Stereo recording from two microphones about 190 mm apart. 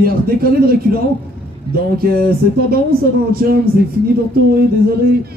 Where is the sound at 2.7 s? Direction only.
50° right (ahead or behind).